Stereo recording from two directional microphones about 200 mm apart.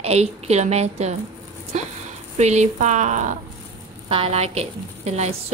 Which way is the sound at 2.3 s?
35° right (ahead or behind).